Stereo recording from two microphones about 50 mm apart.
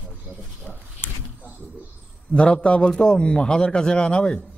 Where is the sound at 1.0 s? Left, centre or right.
Left.